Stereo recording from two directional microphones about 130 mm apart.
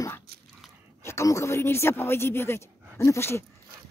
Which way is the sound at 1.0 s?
20° left (ahead or behind).